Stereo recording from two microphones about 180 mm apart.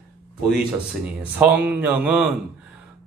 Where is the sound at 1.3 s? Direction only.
10° right (ahead or behind).